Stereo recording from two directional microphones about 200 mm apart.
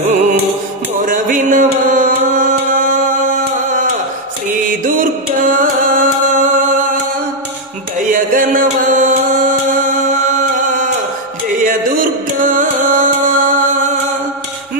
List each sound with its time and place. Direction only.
1.0 s music: 40° right (ahead or behind)
8.1 s music: 40° right (ahead or behind)